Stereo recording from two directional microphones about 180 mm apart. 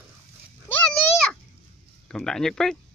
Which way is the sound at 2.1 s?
5° left (ahead or behind).